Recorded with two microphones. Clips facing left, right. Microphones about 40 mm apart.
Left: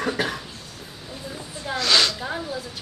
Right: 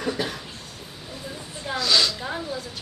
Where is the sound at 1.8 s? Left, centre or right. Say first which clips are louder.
Left 2 dB; left.